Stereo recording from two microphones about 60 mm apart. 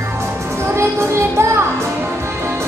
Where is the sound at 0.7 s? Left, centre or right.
Right.